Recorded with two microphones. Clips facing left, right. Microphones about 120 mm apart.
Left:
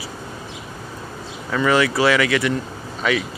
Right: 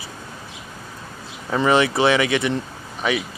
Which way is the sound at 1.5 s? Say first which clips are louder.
Even; 25° right (ahead or behind).